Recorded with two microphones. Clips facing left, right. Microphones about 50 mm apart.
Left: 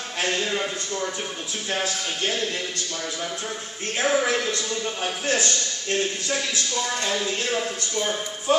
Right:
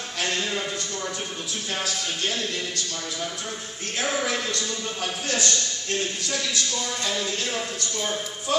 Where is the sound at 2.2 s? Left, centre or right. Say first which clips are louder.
Left 3 dB; left.